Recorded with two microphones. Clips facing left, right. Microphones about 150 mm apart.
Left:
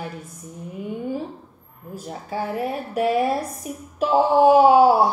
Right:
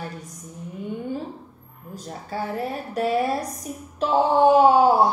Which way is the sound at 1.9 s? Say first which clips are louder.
Left 2 dB; 10° left (ahead or behind).